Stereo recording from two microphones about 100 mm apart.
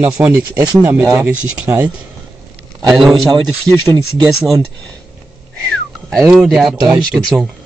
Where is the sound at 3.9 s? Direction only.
45° right (ahead or behind).